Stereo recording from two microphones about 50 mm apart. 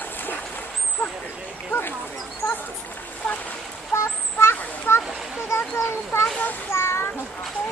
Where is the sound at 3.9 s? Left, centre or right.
Left.